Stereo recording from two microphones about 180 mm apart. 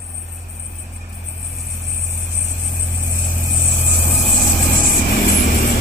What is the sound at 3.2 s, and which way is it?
Vehicle, centre (ahead or behind).